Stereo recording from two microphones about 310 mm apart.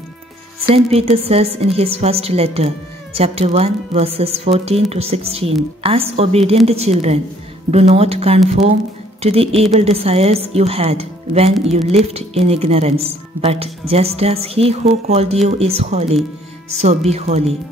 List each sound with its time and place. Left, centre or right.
0.7 s a woman's voice: centre